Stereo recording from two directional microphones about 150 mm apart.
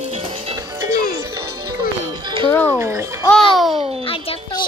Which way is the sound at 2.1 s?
30° right (ahead or behind).